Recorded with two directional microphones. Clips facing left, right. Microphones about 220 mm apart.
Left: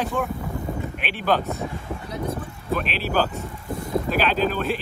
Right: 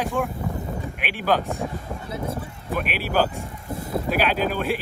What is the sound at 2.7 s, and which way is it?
Speech, 10° right (ahead or behind).